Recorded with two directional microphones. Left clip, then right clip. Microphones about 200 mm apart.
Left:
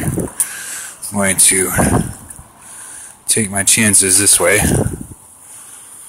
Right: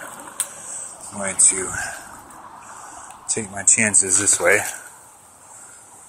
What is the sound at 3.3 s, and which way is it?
Speech, 55° left (ahead or behind).